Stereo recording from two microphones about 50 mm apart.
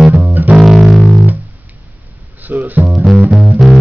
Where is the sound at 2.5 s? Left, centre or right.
Right.